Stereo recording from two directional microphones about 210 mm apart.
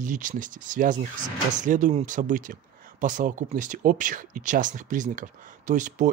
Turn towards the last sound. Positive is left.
turn(degrees=-35)  # may be behind; listen again after turning